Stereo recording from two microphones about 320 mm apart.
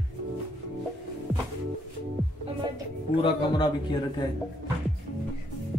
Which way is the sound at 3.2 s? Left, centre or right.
Centre.